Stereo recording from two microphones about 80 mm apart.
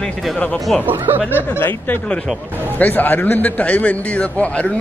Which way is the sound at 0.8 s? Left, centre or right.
Right.